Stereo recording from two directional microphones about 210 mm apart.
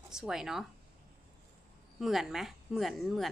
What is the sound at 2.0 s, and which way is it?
A woman's voice, centre (ahead or behind).